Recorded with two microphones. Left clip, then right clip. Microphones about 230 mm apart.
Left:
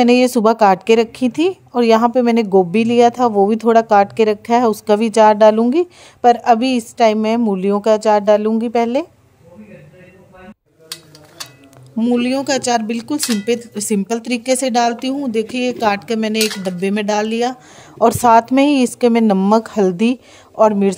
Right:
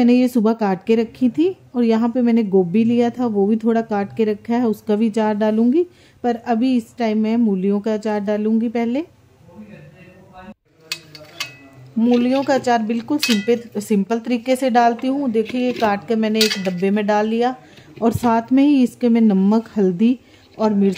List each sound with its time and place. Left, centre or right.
0.0 s a woman's voice: left
12.4 s speech: left